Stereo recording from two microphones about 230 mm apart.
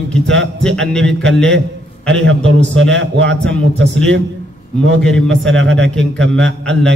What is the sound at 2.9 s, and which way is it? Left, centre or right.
A man's voice, right.